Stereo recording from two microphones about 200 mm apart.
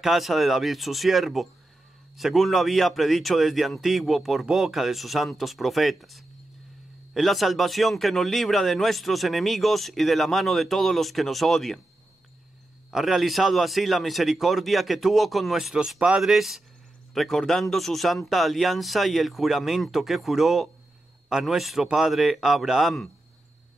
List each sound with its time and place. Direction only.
0.0 s speech: centre (ahead or behind)
12.9 s speech: centre (ahead or behind)